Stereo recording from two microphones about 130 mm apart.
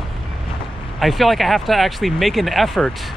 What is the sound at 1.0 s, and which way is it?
Speech, centre (ahead or behind).